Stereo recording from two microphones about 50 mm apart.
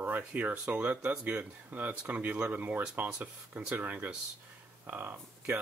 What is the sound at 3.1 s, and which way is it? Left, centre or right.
Speech, centre.